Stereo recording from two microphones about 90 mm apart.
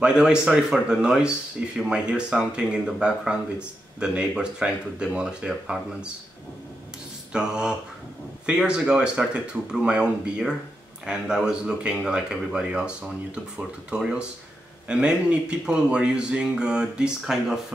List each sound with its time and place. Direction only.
0.0 s speech: 10° right (ahead or behind)
7.3 s speech: 10° right (ahead or behind)